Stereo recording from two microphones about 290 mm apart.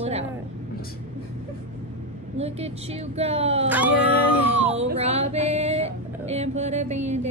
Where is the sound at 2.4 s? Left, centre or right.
Right.